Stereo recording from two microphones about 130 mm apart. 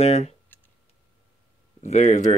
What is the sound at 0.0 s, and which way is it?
Speech, 55° left (ahead or behind).